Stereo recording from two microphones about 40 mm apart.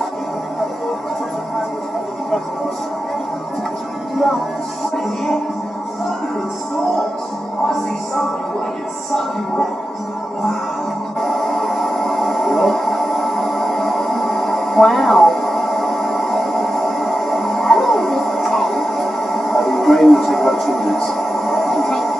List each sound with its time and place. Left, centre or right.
4.9 s music: centre
11.1 s music: centre